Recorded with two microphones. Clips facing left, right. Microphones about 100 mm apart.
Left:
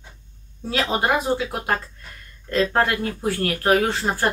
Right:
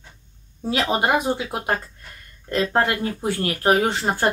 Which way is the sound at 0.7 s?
20° right (ahead or behind).